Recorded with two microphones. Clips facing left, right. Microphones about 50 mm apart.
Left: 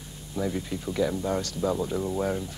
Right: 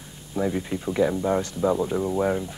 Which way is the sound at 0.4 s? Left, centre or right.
Right.